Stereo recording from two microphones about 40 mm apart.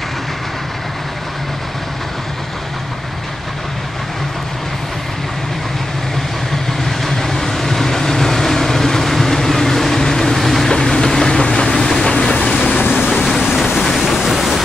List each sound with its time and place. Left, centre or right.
6.8 s vehicle: centre
10.7 s train: centre
12.5 s vehicle: left
13.4 s vehicle: centre
14.1 s a sound: centre